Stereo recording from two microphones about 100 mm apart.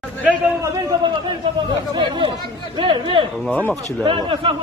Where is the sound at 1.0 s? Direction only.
50° right (ahead or behind).